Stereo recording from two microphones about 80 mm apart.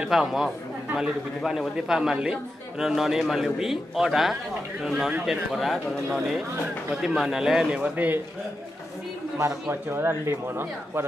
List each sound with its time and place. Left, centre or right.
0.1 s a man's voice: centre
7.9 s speech: right
9.7 s speech: right